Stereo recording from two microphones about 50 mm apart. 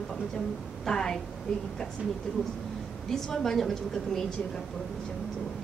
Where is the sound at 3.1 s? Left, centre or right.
Centre.